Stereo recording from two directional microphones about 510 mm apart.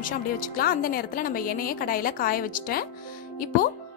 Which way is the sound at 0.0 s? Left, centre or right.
Centre.